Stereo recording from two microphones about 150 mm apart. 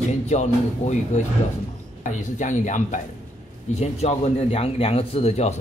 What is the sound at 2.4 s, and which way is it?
Speech, 55° left (ahead or behind).